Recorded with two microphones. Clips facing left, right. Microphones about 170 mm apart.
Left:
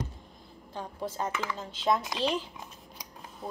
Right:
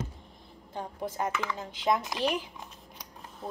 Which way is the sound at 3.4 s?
Centre (ahead or behind).